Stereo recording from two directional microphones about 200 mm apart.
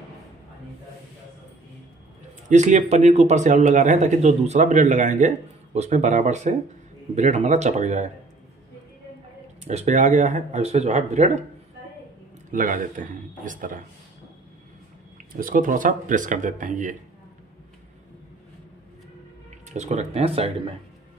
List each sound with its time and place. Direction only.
2.5 s speech: 35° right (ahead or behind)
9.7 s speech: 35° right (ahead or behind)
12.4 s speech: 40° right (ahead or behind)
15.3 s speech: 45° right (ahead or behind)
19.7 s speech: 35° right (ahead or behind)